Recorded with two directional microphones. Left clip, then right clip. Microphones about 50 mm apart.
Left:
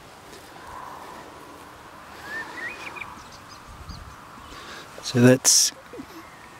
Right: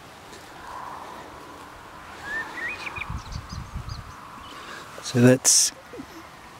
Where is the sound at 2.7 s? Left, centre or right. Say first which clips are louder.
Right 3 dB; right.